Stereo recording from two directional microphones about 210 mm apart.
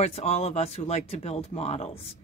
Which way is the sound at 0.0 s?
30° left (ahead or behind).